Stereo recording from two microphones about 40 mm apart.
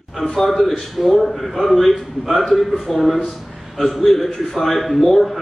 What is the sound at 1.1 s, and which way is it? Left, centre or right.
A man's voice, centre.